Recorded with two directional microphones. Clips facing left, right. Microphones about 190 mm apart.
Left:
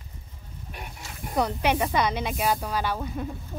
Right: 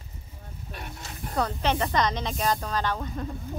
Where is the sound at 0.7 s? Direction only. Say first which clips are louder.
Right 1 dB; 15° left (ahead or behind).